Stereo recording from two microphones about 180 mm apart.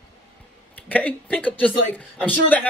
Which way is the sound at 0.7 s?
10° left (ahead or behind).